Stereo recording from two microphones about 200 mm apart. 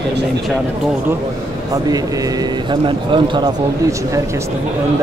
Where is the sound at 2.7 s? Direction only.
25° right (ahead or behind).